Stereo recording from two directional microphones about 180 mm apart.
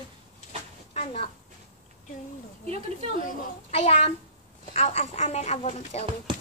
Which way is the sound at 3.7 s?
35° left (ahead or behind).